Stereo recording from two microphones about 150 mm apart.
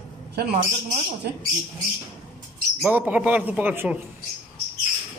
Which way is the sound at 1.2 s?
90° right.